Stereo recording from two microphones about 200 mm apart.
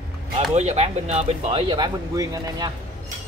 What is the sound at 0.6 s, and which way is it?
Speech, 35° right (ahead or behind).